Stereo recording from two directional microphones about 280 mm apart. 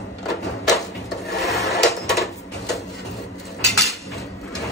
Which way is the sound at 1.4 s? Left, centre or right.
Centre.